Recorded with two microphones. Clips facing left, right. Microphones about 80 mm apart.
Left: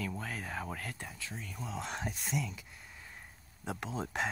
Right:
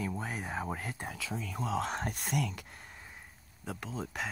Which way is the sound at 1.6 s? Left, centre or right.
Centre.